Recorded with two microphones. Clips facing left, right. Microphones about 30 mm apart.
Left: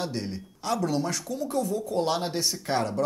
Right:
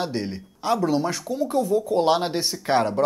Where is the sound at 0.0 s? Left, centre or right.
Right.